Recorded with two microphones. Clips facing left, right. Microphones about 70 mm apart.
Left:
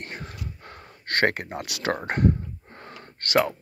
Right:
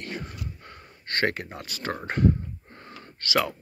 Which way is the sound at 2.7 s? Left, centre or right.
Left.